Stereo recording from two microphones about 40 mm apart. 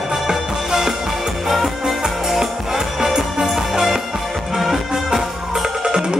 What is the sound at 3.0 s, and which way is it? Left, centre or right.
Music, centre.